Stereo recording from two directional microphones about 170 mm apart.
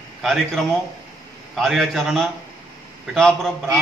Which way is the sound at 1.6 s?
Centre (ahead or behind).